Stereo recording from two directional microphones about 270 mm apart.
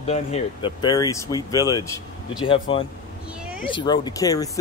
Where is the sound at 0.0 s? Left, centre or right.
Left.